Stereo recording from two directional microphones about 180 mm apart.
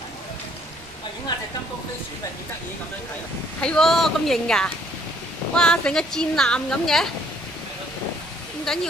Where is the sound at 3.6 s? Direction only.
5° left (ahead or behind).